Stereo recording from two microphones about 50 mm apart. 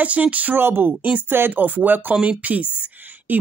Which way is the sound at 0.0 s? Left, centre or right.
Right.